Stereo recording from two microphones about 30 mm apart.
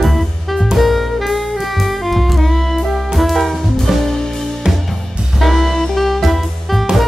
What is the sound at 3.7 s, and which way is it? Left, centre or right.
Music, centre.